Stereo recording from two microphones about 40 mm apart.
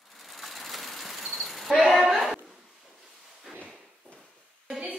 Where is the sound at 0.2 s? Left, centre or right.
Centre.